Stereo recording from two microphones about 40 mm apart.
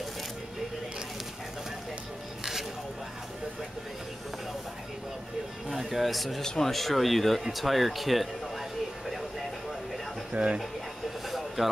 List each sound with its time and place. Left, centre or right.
5.7 s speech: centre
6.4 s speech: centre
6.7 s speech: centre
7.4 s a sound: centre
10.3 s speech: right
11.2 s vehicle: centre